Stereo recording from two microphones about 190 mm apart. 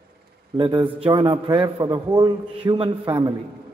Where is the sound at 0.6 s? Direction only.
25° right (ahead or behind).